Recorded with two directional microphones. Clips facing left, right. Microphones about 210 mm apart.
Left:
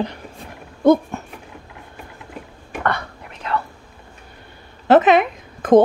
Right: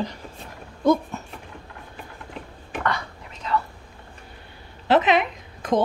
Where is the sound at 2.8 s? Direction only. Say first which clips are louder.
Left 4 dB; 60° left (ahead or behind).